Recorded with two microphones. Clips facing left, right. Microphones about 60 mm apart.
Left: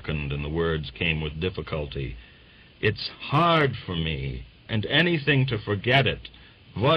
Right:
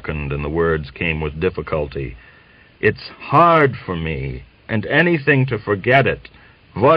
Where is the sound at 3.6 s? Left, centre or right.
Right.